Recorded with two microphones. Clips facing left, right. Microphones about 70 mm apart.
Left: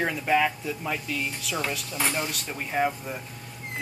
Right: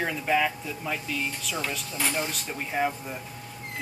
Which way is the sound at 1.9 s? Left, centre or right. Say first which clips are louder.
Even; left.